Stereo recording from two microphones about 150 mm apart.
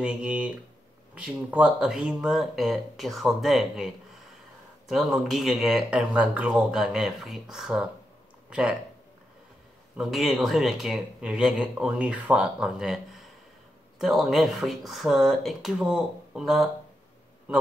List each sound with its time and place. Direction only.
0.0 s speech: 5° right (ahead or behind)
9.9 s speech: centre (ahead or behind)